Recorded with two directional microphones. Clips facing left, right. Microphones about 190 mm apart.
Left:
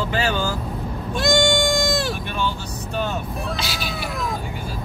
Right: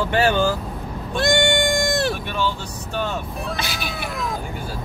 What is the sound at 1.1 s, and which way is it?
Goat, 60° right (ahead or behind).